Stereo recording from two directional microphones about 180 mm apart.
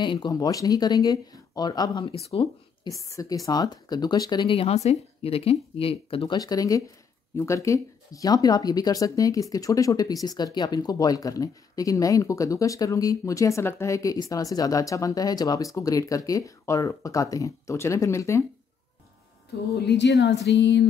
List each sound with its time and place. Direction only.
0.0 s a woman's voice: 25° left (ahead or behind)
19.9 s a woman's voice: 65° left (ahead or behind)